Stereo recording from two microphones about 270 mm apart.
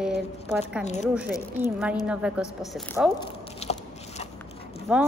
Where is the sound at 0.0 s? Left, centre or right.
Centre.